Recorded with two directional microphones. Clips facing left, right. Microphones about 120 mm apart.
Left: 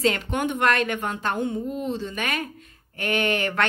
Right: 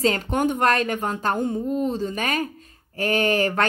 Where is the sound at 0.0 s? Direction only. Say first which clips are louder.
Right 2 dB; 40° right (ahead or behind).